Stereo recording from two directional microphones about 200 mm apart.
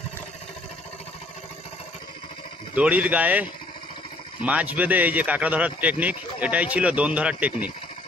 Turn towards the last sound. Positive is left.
turn(degrees=-5)  # may be behind; listen again after turning